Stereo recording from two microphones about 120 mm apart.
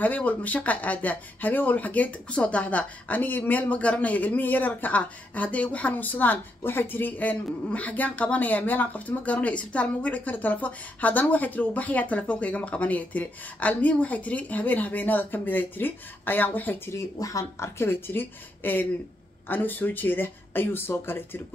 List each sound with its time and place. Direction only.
0.0 s speech: 15° left (ahead or behind)